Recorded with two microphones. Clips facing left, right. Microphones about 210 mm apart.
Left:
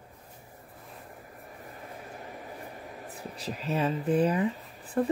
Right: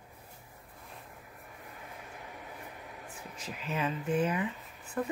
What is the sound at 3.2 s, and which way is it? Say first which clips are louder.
Speech: left 7 dB; 35° left (ahead or behind).